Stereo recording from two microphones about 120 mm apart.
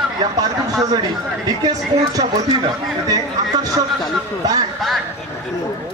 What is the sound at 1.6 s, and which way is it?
Speech, 30° right (ahead or behind).